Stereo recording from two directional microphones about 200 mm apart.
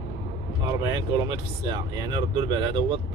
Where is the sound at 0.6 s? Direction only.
20° right (ahead or behind).